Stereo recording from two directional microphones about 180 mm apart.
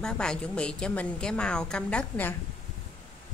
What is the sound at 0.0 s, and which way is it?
A woman's voice, 5° left (ahead or behind).